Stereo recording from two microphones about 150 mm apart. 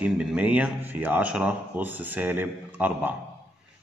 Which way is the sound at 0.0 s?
5° right (ahead or behind).